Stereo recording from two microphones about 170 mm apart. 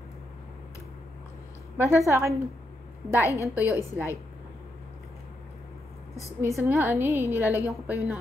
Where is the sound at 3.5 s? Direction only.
10° right (ahead or behind).